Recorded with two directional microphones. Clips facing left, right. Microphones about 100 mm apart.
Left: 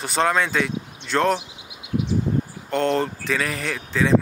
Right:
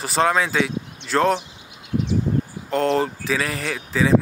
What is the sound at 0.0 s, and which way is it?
Speech, centre (ahead or behind).